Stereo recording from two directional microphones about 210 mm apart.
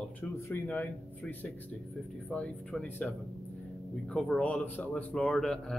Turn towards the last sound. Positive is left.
turn(degrees=0)  # may be behind; listen again after turning